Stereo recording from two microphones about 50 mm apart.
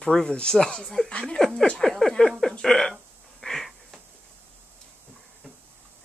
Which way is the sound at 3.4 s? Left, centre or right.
Centre.